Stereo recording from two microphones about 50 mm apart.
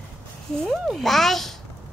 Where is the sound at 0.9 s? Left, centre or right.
Centre.